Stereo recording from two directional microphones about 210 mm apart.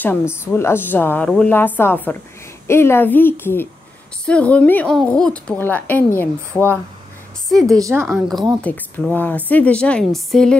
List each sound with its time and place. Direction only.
0.0 s a woman's voice: 10° left (ahead or behind)
7.6 s a woman's voice: 15° right (ahead or behind)
8.0 s a woman's voice: centre (ahead or behind)